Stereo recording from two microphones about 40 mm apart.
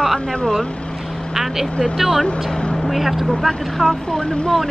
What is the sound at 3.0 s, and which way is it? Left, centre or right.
Speech, centre.